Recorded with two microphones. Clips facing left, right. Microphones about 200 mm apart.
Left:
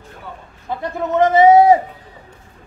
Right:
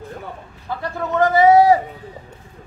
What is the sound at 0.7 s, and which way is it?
A man's voice, 20° left (ahead or behind).